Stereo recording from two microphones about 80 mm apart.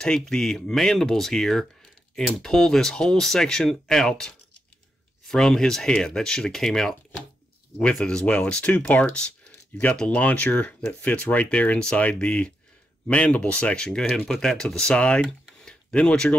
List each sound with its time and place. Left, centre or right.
0.0 s speech: centre
8.0 s speech: centre